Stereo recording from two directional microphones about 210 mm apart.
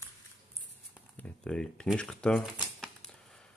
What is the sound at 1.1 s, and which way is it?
Shuffling cards, 5° left (ahead or behind).